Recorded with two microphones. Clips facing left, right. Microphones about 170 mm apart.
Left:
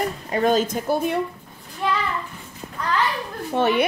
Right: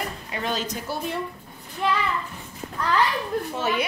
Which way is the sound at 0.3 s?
45° left (ahead or behind).